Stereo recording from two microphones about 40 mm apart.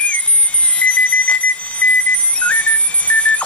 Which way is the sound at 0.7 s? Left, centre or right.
Left.